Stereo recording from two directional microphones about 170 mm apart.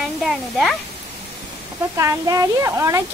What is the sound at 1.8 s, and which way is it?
Speech, 15° right (ahead or behind).